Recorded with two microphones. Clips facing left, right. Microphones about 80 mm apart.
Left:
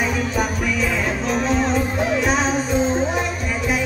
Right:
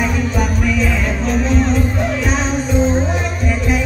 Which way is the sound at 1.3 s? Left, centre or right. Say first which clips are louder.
Right 3 dB; centre.